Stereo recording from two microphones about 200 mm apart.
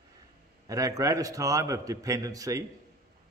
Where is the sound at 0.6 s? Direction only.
15° right (ahead or behind).